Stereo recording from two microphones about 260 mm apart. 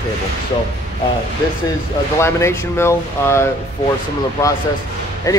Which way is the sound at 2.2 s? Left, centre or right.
Centre.